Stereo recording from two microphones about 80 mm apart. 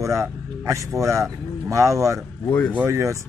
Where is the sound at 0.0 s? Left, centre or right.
Right.